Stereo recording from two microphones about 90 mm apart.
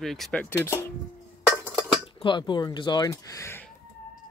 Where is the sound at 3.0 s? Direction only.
40° left (ahead or behind).